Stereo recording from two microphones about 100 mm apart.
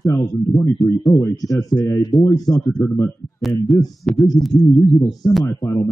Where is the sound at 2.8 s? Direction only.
25° left (ahead or behind).